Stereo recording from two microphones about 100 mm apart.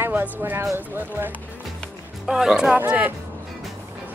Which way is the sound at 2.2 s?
5° right (ahead or behind).